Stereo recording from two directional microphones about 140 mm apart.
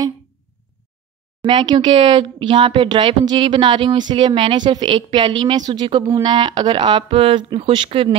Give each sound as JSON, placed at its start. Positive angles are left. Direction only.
{"t": 1.4, "sound": "speech", "side_deg": -35}